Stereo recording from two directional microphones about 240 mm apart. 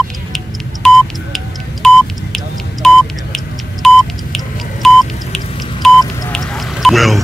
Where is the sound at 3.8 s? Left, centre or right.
Centre.